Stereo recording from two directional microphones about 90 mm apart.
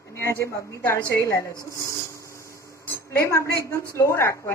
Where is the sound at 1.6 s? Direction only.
35° left (ahead or behind).